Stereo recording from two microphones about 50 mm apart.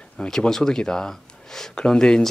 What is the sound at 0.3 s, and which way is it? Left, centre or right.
Speech, centre.